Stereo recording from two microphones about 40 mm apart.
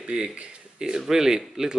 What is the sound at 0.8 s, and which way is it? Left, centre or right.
Speech, centre.